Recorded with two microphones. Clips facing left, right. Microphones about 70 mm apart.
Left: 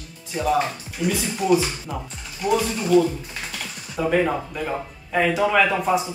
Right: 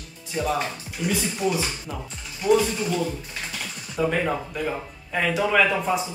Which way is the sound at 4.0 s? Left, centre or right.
Centre.